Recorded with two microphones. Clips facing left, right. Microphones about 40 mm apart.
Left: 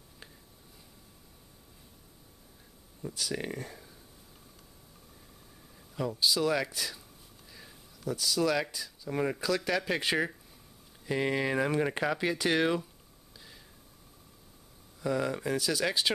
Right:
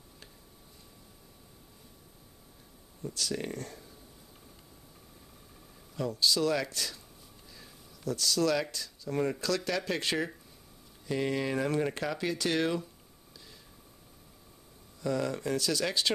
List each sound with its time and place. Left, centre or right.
3.0 s speech: centre
5.9 s speech: centre
7.5 s a sound: centre
8.7 s speech: centre
15.0 s speech: centre